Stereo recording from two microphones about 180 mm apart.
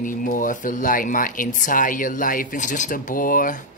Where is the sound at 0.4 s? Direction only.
45° left (ahead or behind).